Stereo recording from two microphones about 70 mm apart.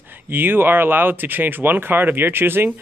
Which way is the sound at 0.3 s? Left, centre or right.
Right.